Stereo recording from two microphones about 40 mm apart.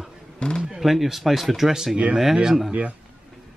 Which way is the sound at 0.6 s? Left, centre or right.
Centre.